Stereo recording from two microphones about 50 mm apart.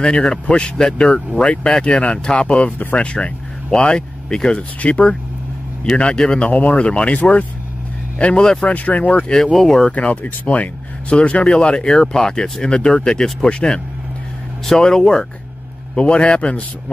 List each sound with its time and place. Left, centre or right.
0.0 s speech: centre
6.5 s speech: left
9.6 s speech: centre
9.9 s speech: left
14.8 s speech: centre